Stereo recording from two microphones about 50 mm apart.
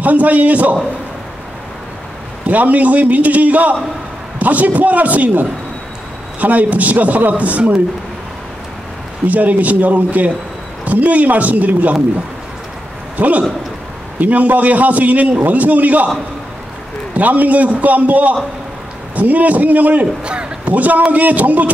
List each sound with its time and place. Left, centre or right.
0.0 s a man's voice: right
2.4 s a man's voice: right
9.3 s a man's voice: right
13.2 s a man's voice: right
17.1 s a man's voice: right